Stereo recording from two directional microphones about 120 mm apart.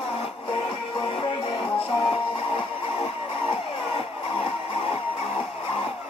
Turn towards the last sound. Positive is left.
turn(degrees=50)  # may be behind; listen again after turning